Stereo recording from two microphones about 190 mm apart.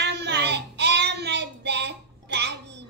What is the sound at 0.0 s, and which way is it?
Child singing, 65° right (ahead or behind).